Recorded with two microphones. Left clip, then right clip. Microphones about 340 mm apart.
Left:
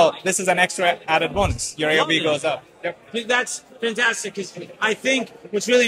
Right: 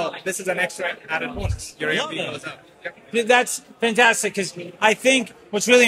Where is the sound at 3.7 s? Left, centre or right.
Right.